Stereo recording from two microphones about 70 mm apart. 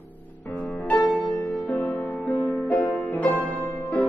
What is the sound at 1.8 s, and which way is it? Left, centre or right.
Music, left.